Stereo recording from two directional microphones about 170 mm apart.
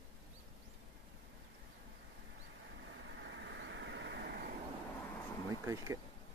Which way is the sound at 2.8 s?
90° right.